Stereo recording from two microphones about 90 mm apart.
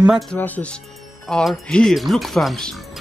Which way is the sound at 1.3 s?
5° left (ahead or behind).